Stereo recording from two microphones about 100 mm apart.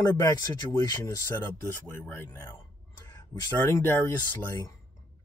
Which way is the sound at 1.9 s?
20° left (ahead or behind).